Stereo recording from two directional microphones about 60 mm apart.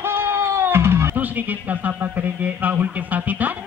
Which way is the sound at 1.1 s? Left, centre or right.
Right.